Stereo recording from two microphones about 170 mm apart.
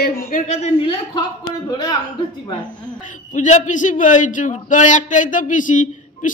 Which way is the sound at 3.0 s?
45° left (ahead or behind).